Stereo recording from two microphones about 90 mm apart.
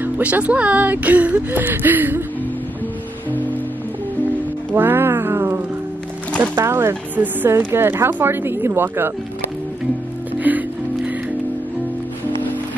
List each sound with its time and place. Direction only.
0.0 s speech: 15° right (ahead or behind)
4.7 s cat: 25° right (ahead or behind)
6.5 s speech: 25° right (ahead or behind)
10.4 s music: 20° right (ahead or behind)